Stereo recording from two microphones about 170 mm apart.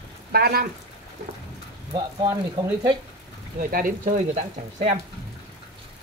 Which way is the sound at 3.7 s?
55° right (ahead or behind).